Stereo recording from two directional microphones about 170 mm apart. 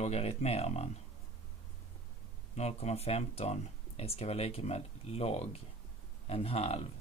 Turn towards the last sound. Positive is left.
turn(degrees=35)  # may be behind; listen again after turning